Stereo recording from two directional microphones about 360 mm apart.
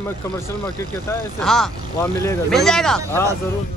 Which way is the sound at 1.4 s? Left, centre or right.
Centre.